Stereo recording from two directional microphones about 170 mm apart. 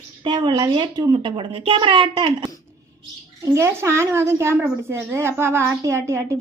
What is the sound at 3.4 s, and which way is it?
A woman's voice, 15° right (ahead or behind).